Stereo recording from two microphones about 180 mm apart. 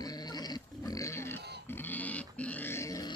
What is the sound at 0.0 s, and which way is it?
Pig, 20° left (ahead or behind).